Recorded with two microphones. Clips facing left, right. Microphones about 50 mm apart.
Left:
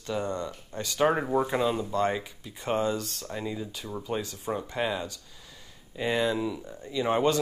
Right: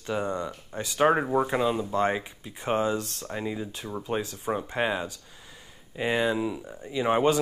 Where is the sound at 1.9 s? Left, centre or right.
Right.